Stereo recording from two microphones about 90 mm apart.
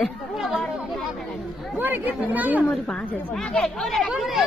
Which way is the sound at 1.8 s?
20° right (ahead or behind).